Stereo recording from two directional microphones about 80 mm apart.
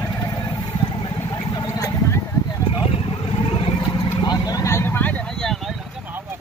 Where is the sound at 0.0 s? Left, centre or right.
Left.